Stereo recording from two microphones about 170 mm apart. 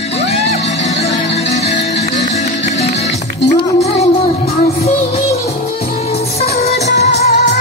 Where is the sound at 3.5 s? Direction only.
40° left (ahead or behind).